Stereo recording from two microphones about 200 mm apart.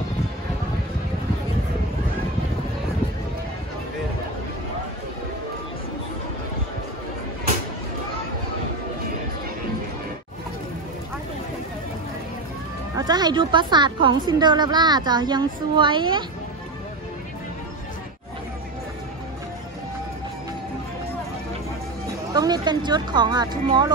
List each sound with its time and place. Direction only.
12.9 s a woman's voice: 20° right (ahead or behind)
22.3 s speech: 20° right (ahead or behind)